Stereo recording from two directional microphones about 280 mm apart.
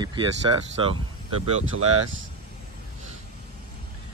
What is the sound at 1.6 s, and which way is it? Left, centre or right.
Speech, right.